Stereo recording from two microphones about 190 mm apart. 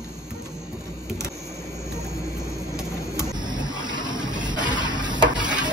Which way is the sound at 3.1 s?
20° right (ahead or behind).